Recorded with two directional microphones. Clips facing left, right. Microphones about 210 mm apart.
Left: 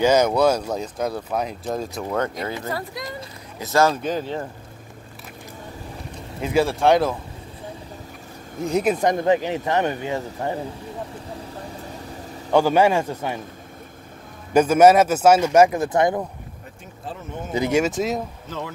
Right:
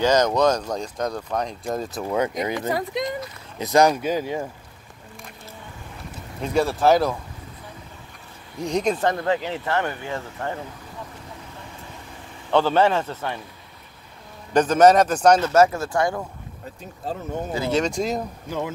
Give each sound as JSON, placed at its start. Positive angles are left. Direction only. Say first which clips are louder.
{"t": 0.0, "sound": "speech", "louder": "left 2 dB", "side_deg": 10}
{"t": 6.4, "sound": "speech", "louder": "left 1 dB", "side_deg": 0}
{"t": 8.5, "sound": "speech", "louder": "left 2 dB", "side_deg": 5}
{"t": 12.4, "sound": "speech", "louder": "left 2 dB", "side_deg": 10}
{"t": 14.5, "sound": "speech", "louder": "left 2 dB", "side_deg": 10}
{"t": 17.5, "sound": "speech", "louder": "left 3 dB", "side_deg": 15}
{"t": 18.5, "sound": "speech", "louder": "right 4 dB", "side_deg": -10}